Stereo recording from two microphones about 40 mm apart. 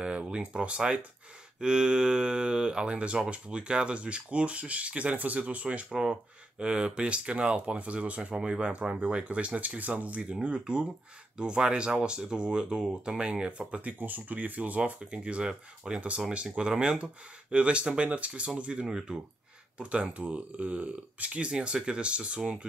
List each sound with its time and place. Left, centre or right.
0.0 s speech: right
5.9 s speech: centre
8.4 s speech: right
10.6 s speech: right
18.9 s speech: centre
19.8 s speech: right
21.5 s speech: right